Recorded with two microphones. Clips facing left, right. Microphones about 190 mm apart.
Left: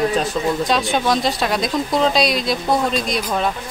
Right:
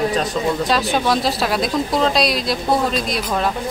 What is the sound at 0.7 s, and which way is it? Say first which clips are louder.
Speech: even; centre (ahead or behind).